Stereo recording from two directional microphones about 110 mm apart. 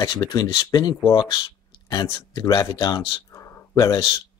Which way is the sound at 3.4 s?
25° left (ahead or behind).